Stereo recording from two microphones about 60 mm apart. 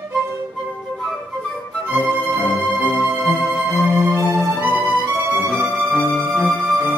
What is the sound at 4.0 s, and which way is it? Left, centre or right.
Music, right.